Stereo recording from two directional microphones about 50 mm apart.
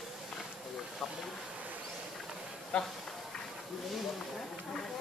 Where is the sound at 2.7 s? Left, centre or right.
Centre.